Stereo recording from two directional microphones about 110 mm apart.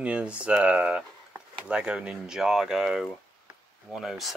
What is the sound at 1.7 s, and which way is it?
Speech, 10° right (ahead or behind).